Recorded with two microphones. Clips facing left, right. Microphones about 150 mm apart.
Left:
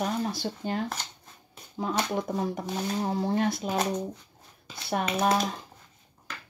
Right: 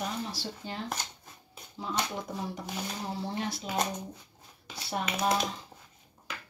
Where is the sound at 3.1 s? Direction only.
50° left (ahead or behind).